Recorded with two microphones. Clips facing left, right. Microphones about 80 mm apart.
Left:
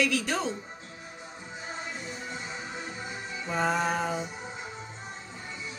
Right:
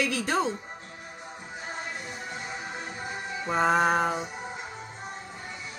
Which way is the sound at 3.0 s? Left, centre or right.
Right.